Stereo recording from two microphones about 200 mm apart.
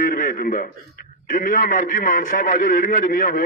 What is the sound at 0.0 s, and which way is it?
A man's voice, 40° left (ahead or behind).